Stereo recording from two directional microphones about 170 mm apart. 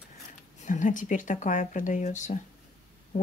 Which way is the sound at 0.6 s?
50° left (ahead or behind).